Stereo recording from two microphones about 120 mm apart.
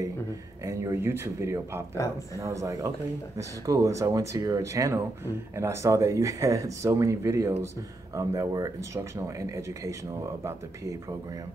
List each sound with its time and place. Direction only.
0.7 s speech: 25° right (ahead or behind)